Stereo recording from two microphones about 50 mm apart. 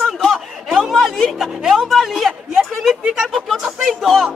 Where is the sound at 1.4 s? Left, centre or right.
Centre.